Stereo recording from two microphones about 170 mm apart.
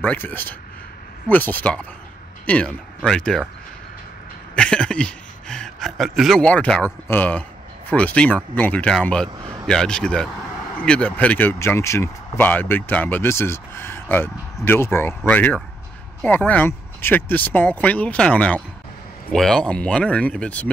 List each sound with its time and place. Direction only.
0.0 s speech: 10° left (ahead or behind)
4.6 s a man's voice: 5° left (ahead or behind)
9.4 s a sound: 25° right (ahead or behind)
9.7 s speech: 5° left (ahead or behind)